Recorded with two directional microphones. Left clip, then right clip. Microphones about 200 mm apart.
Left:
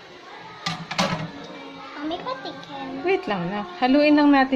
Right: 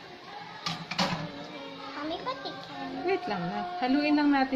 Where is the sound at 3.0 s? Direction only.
30° left (ahead or behind).